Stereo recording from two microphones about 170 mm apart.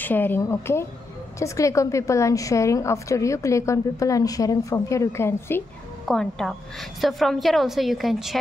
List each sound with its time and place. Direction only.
0.0 s a woman's voice: 10° left (ahead or behind)
6.0 s a woman's voice: 5° left (ahead or behind)